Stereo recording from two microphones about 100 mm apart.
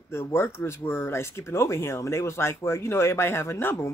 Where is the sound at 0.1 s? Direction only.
25° left (ahead or behind).